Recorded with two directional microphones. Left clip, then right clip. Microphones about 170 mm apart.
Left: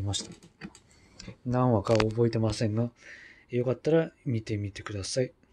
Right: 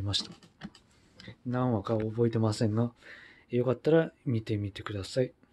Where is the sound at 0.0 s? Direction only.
20° right (ahead or behind).